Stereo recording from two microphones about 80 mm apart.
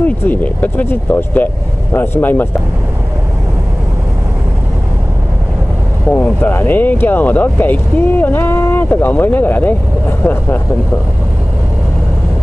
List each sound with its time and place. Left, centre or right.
0.0 s speech: left
6.0 s speech: centre